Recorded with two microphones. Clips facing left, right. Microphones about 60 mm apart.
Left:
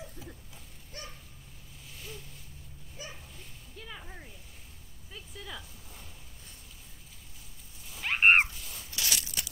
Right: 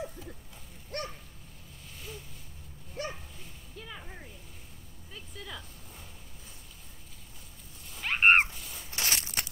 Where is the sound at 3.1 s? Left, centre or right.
Centre.